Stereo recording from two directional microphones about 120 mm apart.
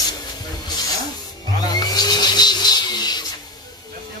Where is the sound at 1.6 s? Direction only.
35° left (ahead or behind).